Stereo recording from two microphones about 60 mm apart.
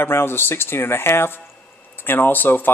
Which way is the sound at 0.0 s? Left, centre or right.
Left.